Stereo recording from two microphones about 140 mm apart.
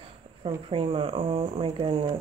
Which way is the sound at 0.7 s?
40° right (ahead or behind).